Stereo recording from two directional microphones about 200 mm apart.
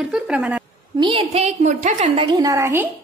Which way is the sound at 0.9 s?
30° right (ahead or behind).